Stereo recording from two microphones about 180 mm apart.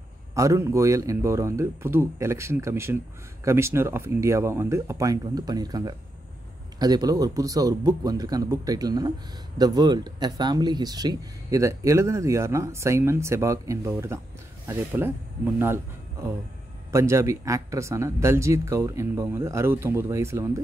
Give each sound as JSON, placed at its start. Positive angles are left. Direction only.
{"t": 0.3, "sound": "speech", "side_deg": -15}
{"t": 16.9, "sound": "speech", "side_deg": -15}